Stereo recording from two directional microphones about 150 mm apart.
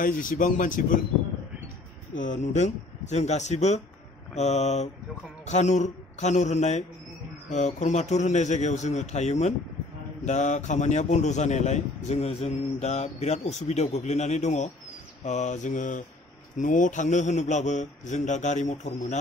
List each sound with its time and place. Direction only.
0.0 s speech: 65° left (ahead or behind)
2.1 s a man's voice: 55° left (ahead or behind)